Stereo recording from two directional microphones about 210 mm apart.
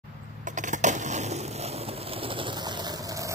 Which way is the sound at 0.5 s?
35° right (ahead or behind).